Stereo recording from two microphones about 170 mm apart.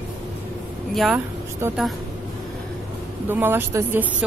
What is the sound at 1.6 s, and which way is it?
Speech, 15° right (ahead or behind).